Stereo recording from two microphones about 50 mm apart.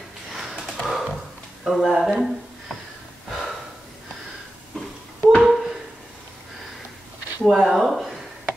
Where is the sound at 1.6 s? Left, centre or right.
Centre.